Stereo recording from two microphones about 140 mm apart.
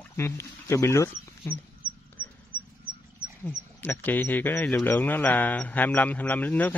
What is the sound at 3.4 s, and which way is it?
Speech, 15° left (ahead or behind).